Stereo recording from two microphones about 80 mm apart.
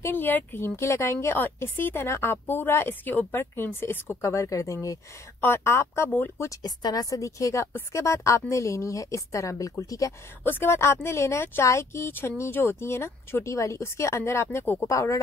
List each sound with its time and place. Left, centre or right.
0.0 s a woman's voice: left
6.6 s a woman's voice: left
10.4 s speech: left